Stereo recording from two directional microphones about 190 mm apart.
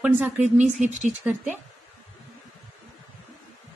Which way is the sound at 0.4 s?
40° right (ahead or behind).